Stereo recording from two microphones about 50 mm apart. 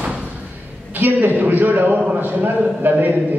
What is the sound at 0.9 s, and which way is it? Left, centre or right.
A man's voice, right.